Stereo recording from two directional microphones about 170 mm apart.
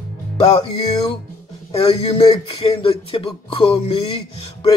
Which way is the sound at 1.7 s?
35° left (ahead or behind).